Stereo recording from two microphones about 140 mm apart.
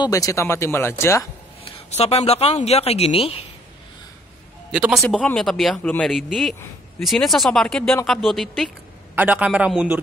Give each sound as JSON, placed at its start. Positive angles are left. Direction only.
{"t": 0.0, "sound": "speech", "side_deg": 25}
{"t": 1.6, "sound": "speech", "side_deg": 45}
{"t": 4.7, "sound": "a man's voice", "side_deg": -5}
{"t": 5.0, "sound": "speech", "side_deg": 5}
{"t": 9.1, "sound": "a man's voice", "side_deg": -10}